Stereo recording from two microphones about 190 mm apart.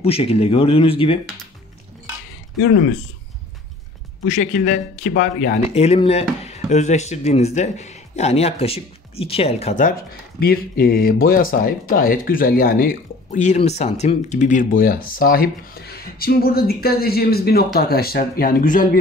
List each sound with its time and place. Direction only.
0.0 s speech: 30° left (ahead or behind)
4.3 s speech: 40° left (ahead or behind)
10.4 s speech: 50° left (ahead or behind)